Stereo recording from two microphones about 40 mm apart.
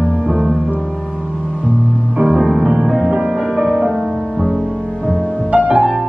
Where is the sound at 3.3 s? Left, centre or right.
Centre.